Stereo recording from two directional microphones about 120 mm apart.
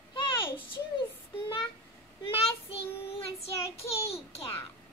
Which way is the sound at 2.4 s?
55° left (ahead or behind).